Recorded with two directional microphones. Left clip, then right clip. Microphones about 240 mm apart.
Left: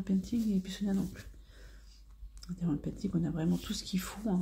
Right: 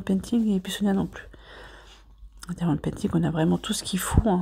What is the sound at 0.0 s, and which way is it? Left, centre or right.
Speech, right.